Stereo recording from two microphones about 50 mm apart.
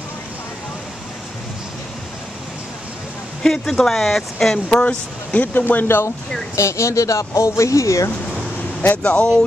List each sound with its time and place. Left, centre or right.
3.6 s speech: centre
4.8 s speech: left
6.5 s speech: left
8.9 s speech: left